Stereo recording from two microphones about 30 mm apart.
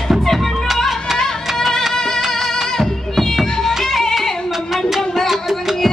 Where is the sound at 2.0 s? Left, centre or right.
Centre.